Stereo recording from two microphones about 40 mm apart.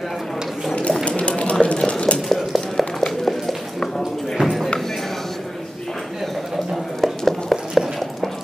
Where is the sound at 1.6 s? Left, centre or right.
Left.